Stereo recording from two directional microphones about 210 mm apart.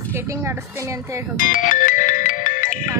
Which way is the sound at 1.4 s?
40° left (ahead or behind).